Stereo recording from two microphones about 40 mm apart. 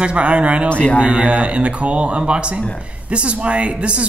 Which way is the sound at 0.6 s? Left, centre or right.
Left.